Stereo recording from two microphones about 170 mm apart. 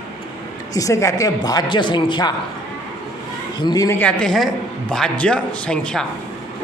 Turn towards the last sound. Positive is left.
turn(degrees=5)  # may be behind; listen again after turning